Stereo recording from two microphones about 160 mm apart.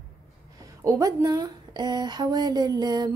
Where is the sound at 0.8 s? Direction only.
20° right (ahead or behind).